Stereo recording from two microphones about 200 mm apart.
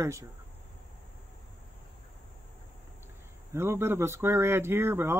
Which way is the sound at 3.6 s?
10° right (ahead or behind).